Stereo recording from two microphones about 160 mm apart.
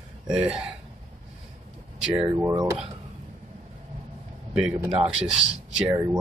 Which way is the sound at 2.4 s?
25° right (ahead or behind).